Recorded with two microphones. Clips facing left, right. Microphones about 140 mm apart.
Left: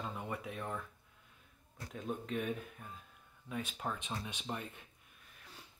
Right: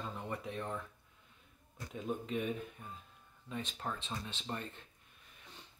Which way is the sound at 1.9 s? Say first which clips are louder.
Right 1 dB; centre (ahead or behind).